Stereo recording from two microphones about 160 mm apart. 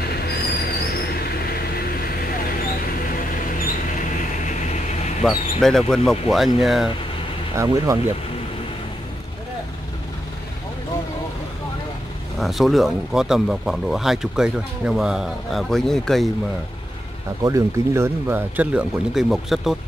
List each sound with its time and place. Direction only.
3.4 s a sound: 55° left (ahead or behind)
5.2 s speech: centre (ahead or behind)
7.5 s speech: 20° right (ahead or behind)
12.4 s speech: centre (ahead or behind)
17.4 s speech: 20° right (ahead or behind); by 19.8 s centre (ahead or behind)